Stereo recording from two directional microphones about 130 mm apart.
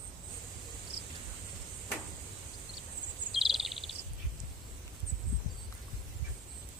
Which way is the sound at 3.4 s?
Centre (ahead or behind).